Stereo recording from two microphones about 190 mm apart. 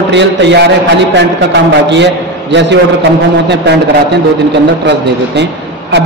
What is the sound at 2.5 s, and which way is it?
Speech, 70° right (ahead or behind).